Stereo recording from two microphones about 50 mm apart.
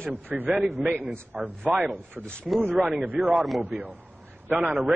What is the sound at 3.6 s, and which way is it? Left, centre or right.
A man's voice, right.